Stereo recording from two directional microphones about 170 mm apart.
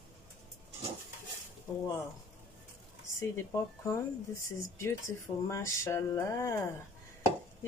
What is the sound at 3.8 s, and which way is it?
Speech, 15° left (ahead or behind).